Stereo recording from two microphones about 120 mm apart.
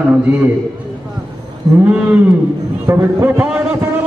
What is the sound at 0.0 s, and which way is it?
Speech, 15° right (ahead or behind).